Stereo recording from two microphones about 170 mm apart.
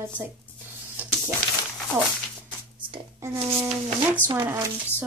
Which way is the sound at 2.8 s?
30° right (ahead or behind).